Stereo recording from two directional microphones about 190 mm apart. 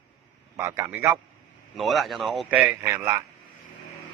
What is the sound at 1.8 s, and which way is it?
Speech, centre (ahead or behind).